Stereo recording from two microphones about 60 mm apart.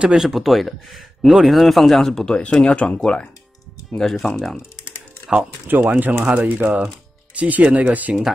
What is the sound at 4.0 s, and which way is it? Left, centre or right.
Speech, centre.